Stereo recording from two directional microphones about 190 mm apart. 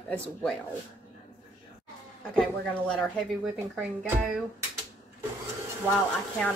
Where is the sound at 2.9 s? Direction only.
5° left (ahead or behind).